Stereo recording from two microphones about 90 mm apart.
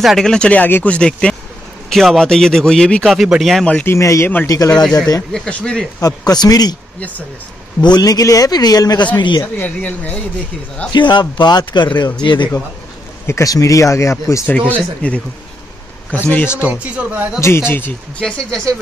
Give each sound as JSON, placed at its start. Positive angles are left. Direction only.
{"t": 0.0, "sound": "a man's voice", "side_deg": 0}
{"t": 3.2, "sound": "a man's voice", "side_deg": -5}
{"t": 3.8, "sound": "a man's voice", "side_deg": 35}
{"t": 5.3, "sound": "speech", "side_deg": 10}
{"t": 5.9, "sound": "a man's voice", "side_deg": 40}
{"t": 7.8, "sound": "a man's voice", "side_deg": 50}
{"t": 9.1, "sound": "speech", "side_deg": 55}
{"t": 9.4, "sound": "speech", "side_deg": 25}
{"t": 10.9, "sound": "speech", "side_deg": 60}
{"t": 13.3, "sound": "speech", "side_deg": 40}
{"t": 14.5, "sound": "speech", "side_deg": 15}
{"t": 16.6, "sound": "speech", "side_deg": -15}
{"t": 17.4, "sound": "speech", "side_deg": 30}
{"t": 18.2, "sound": "speech", "side_deg": 5}